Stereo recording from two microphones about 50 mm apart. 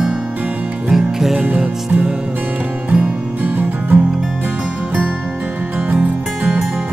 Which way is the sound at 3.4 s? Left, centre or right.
Right.